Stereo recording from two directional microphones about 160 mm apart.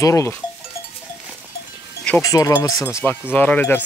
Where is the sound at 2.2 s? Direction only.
20° left (ahead or behind).